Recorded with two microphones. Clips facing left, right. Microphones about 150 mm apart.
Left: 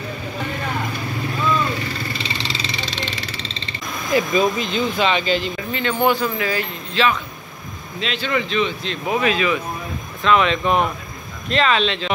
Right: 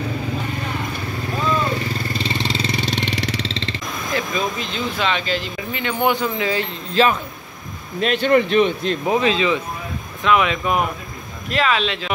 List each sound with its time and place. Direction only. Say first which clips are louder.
2.1 s vehicle: right 5 dB; 50° right (ahead or behind); by 3.8 s 90° right
4.1 s speech: left 6 dB; 5° left (ahead or behind)
5.7 s speech: left 1 dB; 15° right (ahead or behind)
6.9 s speech: right 3 dB; 40° right (ahead or behind)
9.0 s speech: even; 25° right (ahead or behind)
10.2 s speech: left 1 dB; 10° right (ahead or behind)